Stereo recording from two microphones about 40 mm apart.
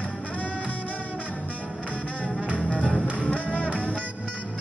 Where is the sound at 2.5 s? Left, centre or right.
Left.